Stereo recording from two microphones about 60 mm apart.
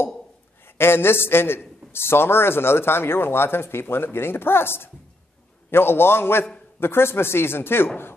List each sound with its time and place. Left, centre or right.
0.7 s a man's voice: left